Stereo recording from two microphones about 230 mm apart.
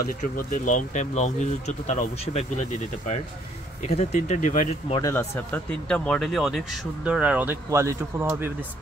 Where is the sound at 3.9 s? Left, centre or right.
Left.